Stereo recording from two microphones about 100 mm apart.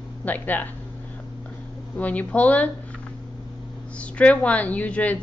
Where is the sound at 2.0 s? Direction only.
15° left (ahead or behind).